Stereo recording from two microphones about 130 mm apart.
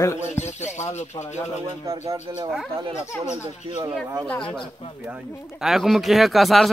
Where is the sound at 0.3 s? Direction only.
60° left (ahead or behind).